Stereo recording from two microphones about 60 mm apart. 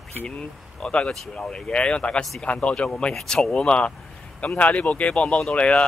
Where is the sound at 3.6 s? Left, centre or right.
Centre.